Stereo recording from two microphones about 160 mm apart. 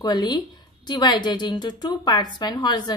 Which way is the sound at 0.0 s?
25° left (ahead or behind).